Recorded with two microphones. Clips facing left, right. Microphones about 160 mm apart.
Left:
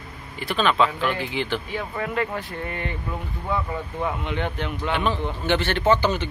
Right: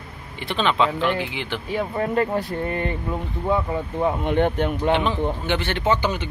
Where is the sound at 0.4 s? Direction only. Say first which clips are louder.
Even; 25° right (ahead or behind).